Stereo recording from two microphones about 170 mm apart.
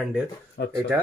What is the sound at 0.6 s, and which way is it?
Speech, 85° left.